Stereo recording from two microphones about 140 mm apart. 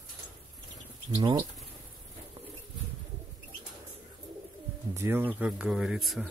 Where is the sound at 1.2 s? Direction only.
35° right (ahead or behind).